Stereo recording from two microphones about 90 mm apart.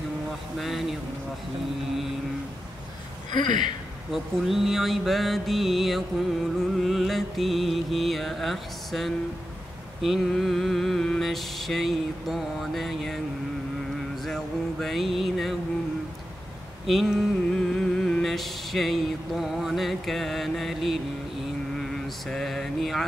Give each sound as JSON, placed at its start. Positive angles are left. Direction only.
{"t": 0.6, "sound": "mantra", "side_deg": 0}
{"t": 3.3, "sound": "speech", "side_deg": 55}
{"t": 4.1, "sound": "mantra", "side_deg": 0}
{"t": 14.2, "sound": "a sound", "side_deg": 5}
{"t": 16.8, "sound": "a sound", "side_deg": 0}
{"t": 21.7, "sound": "mantra", "side_deg": 5}